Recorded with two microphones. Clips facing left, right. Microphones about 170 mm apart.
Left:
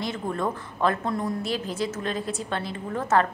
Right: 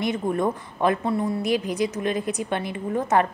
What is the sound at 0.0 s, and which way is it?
A woman's voice, 20° right (ahead or behind).